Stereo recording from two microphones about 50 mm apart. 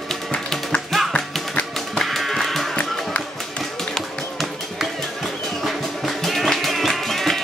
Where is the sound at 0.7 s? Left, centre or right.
Left.